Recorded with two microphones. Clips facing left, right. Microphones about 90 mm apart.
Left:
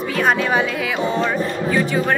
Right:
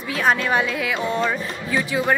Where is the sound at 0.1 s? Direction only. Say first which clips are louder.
Left 1 dB; centre (ahead or behind).